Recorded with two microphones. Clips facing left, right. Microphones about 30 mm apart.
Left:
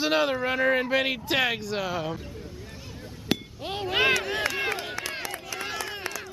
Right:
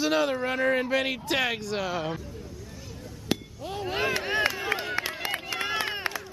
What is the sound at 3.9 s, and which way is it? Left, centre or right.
Speech, left.